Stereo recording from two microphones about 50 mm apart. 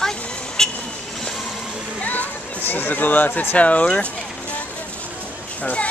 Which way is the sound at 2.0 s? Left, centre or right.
Left.